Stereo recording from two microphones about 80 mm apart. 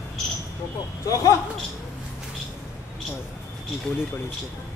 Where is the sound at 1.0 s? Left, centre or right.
Left.